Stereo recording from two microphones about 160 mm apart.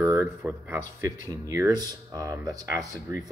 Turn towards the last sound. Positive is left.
turn(degrees=-20)  # may be behind; listen again after turning